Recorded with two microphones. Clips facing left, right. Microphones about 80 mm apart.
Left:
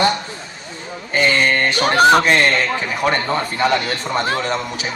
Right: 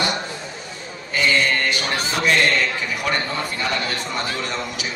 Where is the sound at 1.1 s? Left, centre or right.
Left.